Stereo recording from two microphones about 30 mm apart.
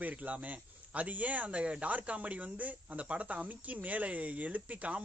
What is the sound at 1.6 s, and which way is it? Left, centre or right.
Speech, right.